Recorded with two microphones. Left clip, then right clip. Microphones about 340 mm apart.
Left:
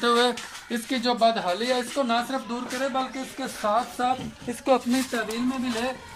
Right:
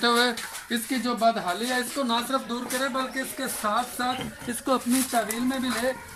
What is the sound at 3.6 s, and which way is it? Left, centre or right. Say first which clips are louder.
Speech: left 3 dB; centre.